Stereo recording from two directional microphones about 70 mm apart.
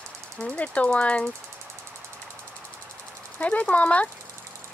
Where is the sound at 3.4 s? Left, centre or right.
Centre.